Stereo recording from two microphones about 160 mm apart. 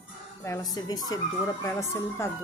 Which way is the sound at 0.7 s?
25° left (ahead or behind).